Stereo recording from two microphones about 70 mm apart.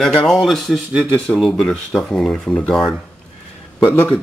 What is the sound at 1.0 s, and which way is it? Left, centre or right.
Speech, centre.